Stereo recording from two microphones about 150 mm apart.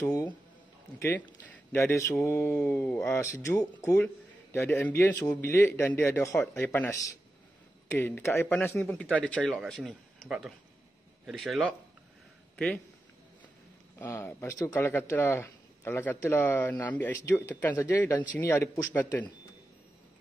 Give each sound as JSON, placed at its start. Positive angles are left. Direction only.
{"t": 0.1, "sound": "speech", "side_deg": 25}
{"t": 1.0, "sound": "a man's voice", "side_deg": 15}
{"t": 13.9, "sound": "a man's voice", "side_deg": 15}